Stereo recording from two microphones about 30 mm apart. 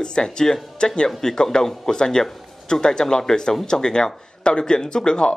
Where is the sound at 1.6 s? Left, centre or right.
Centre.